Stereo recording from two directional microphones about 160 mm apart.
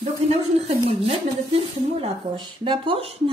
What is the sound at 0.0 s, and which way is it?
Speech, 40° right (ahead or behind).